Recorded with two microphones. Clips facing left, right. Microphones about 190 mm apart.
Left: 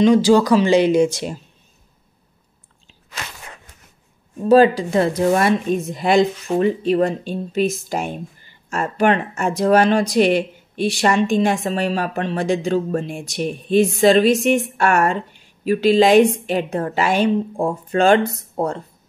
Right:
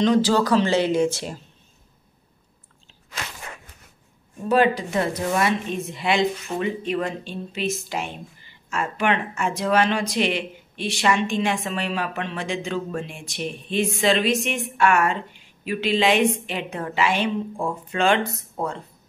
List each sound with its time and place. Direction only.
0.0 s speech: 10° left (ahead or behind)
4.5 s speech: 35° left (ahead or behind)
5.3 s speech: 45° left (ahead or behind)